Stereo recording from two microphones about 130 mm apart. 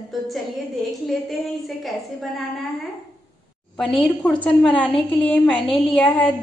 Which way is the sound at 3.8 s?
5° left (ahead or behind).